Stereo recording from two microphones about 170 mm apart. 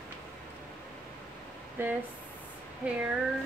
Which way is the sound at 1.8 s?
10° right (ahead or behind).